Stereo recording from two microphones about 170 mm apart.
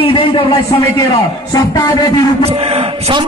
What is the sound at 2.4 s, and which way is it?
Speech, 35° right (ahead or behind).